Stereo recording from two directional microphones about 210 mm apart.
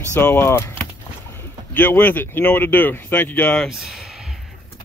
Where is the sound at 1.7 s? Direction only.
10° left (ahead or behind).